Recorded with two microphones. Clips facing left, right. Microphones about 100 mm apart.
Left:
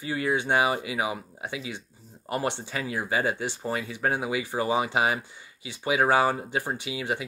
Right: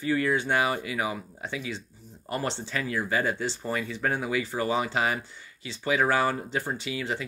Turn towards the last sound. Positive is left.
turn(degrees=15)  # may be behind; listen again after turning